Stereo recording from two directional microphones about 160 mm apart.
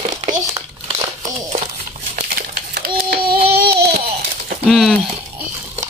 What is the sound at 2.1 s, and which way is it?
Babbling, 65° right (ahead or behind).